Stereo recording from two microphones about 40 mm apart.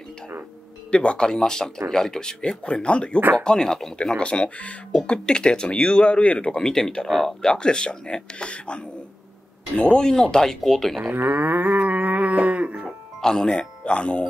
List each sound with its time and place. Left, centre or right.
0.9 s speech: left
3.2 s speech: right
3.4 s speech: centre
4.2 s speech: left
4.9 s speech: centre
6.6 s speech: centre
7.1 s speech: centre
7.4 s speech: centre
10.0 s speech: centre
11.1 s livestock: right
13.2 s speech: centre
13.6 s speech: left